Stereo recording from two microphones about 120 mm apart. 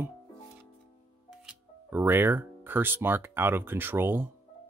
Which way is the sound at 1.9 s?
20° right (ahead or behind).